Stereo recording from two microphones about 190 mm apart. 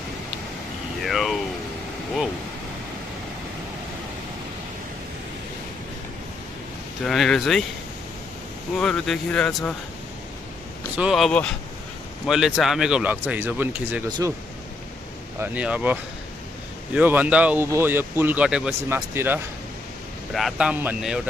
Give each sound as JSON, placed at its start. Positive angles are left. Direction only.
{"t": 1.0, "sound": "speech", "side_deg": 0}
{"t": 7.1, "sound": "speech", "side_deg": 0}
{"t": 8.7, "sound": "speech", "side_deg": 5}
{"t": 11.0, "sound": "speech", "side_deg": 0}
{"t": 14.0, "sound": "speech", "side_deg": -20}
{"t": 15.4, "sound": "speech", "side_deg": -5}